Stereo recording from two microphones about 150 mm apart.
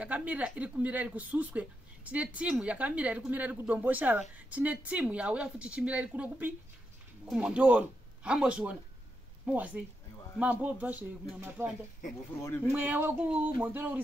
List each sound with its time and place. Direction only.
0.0 s speech: 10° right (ahead or behind)
12.4 s speech: 15° left (ahead or behind)
12.6 s speech: 10° right (ahead or behind)